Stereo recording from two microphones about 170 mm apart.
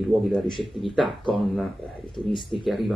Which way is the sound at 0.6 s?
Centre (ahead or behind).